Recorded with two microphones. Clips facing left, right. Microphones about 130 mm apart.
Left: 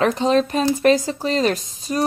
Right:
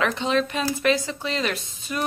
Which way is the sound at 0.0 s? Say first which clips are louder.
Left 6 dB; 40° left (ahead or behind).